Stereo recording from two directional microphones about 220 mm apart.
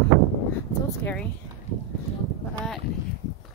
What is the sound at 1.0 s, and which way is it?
Speech, 5° left (ahead or behind).